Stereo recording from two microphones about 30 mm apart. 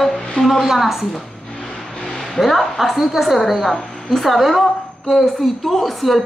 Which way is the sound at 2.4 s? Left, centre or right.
Centre.